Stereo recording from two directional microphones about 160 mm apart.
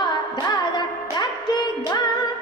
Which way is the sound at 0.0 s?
25° left (ahead or behind).